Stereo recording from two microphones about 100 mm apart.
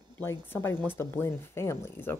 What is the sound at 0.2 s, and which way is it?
Speech, 25° left (ahead or behind).